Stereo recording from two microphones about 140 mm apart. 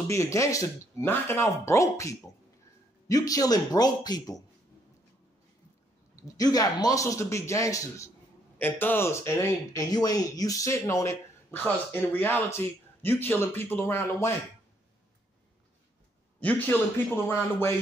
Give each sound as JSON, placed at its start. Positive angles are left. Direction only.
{"t": 0.1, "sound": "speech", "side_deg": 20}
{"t": 6.2, "sound": "speech", "side_deg": 25}
{"t": 16.3, "sound": "speech", "side_deg": 10}